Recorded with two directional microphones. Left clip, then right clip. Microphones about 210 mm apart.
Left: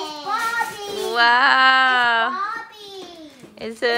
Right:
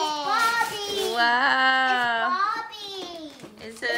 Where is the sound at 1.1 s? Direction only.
15° right (ahead or behind).